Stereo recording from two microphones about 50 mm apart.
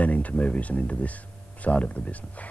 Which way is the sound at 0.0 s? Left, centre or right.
Left.